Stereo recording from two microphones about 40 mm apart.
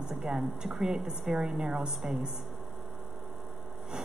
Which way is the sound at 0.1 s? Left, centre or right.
Centre.